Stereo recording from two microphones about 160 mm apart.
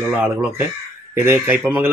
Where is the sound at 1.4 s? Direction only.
5° right (ahead or behind).